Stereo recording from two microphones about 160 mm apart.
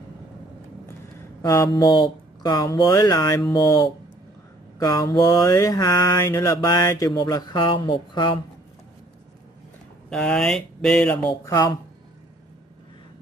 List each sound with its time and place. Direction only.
1.4 s mantra: 25° left (ahead or behind)
10.0 s speech: 5° left (ahead or behind)
11.4 s mantra: 25° left (ahead or behind)